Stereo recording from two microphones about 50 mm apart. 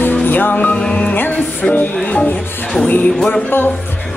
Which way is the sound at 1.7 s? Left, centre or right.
Left.